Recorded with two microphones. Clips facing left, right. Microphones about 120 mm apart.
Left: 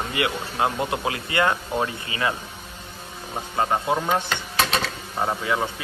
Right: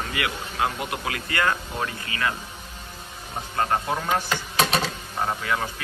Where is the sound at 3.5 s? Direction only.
15° left (ahead or behind).